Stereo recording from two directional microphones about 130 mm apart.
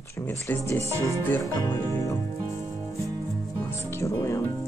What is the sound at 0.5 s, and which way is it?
Music, 20° left (ahead or behind).